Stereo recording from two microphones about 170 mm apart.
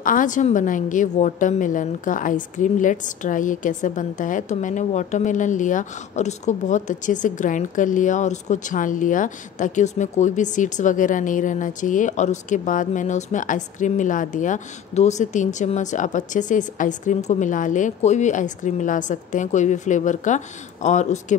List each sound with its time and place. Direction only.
0.0 s a woman's voice: 50° left (ahead or behind)